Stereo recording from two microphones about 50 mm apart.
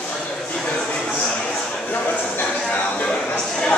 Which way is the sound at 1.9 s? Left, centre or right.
Left.